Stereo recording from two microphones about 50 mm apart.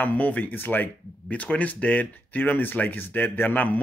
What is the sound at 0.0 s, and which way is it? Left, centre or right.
Speech, left.